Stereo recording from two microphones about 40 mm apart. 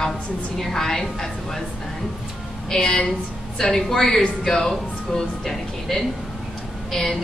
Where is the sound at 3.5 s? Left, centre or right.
Centre.